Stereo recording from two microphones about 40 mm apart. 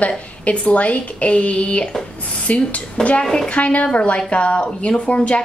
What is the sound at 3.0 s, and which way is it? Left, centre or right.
Speech, centre.